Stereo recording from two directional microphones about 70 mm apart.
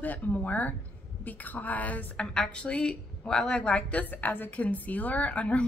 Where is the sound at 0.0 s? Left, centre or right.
Left.